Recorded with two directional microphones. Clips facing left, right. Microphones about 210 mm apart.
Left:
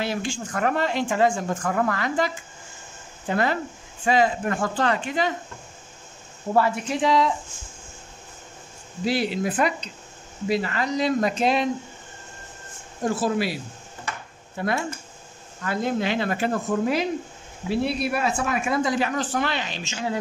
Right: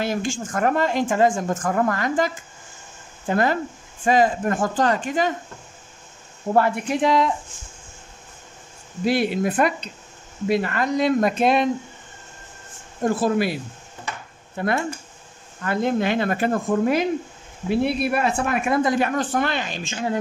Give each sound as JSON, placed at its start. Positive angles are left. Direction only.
{"t": 0.0, "sound": "speech", "side_deg": -45}
{"t": 6.5, "sound": "speech", "side_deg": -55}
{"t": 9.0, "sound": "speech", "side_deg": -55}
{"t": 13.0, "sound": "speech", "side_deg": -55}
{"t": 14.6, "sound": "speech", "side_deg": -55}